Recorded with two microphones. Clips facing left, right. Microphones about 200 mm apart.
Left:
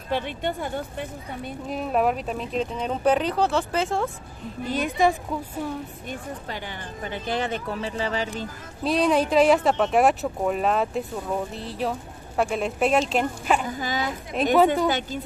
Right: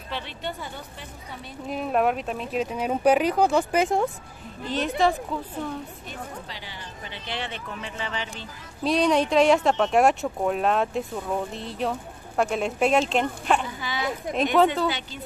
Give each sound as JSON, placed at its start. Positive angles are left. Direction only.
{"t": 0.1, "sound": "speech", "side_deg": 50}
{"t": 1.7, "sound": "speech", "side_deg": 0}
{"t": 4.6, "sound": "a woman's voice", "side_deg": 10}
{"t": 6.0, "sound": "speech", "side_deg": 50}
{"t": 8.8, "sound": "speech", "side_deg": 0}
{"t": 13.7, "sound": "speech", "side_deg": 45}
{"t": 14.3, "sound": "speech", "side_deg": 0}